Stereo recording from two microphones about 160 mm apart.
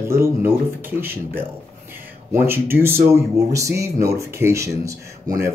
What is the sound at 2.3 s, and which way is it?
Speech, 15° right (ahead or behind).